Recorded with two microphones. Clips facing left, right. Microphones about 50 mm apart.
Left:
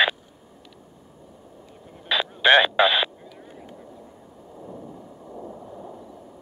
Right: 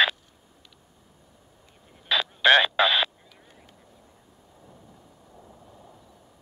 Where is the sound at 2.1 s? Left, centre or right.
Centre.